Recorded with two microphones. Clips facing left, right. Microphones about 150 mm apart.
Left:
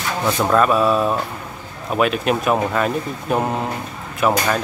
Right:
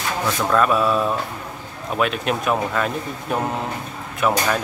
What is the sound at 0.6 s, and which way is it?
Speech, 5° left (ahead or behind).